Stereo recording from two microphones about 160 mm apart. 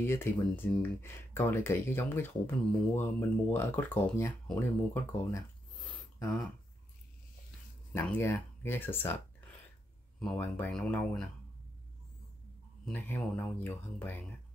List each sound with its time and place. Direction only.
0.0 s speech: 15° left (ahead or behind)
5.9 s a sound: 15° left (ahead or behind)
7.9 s speech: 15° left (ahead or behind)
12.8 s speech: 10° left (ahead or behind)